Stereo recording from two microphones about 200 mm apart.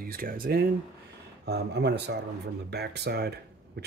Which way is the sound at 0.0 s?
45° right (ahead or behind).